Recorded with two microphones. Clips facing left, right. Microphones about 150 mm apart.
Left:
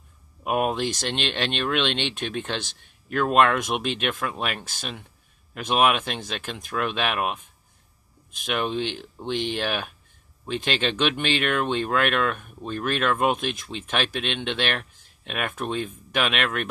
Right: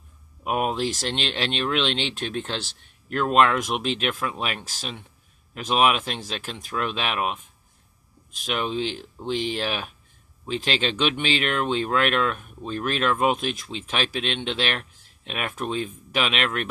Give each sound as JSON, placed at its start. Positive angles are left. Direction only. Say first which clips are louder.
{"t": 0.4, "sound": "speech", "louder": "left 1 dB", "side_deg": 0}
{"t": 8.4, "sound": "speech", "louder": "even", "side_deg": 0}